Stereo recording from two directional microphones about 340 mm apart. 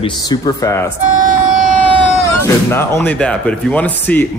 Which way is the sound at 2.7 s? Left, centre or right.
Centre.